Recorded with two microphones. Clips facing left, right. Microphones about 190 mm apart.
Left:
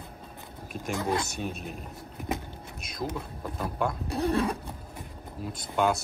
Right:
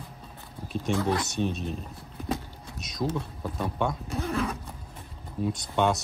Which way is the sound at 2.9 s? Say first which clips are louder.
Right 4 dB; 5° left (ahead or behind).